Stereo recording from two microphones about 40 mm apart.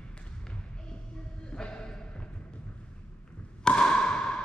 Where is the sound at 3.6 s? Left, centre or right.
Left.